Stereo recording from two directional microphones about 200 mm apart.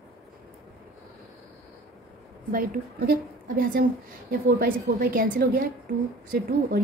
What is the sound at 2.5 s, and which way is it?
A woman's voice, 45° right (ahead or behind).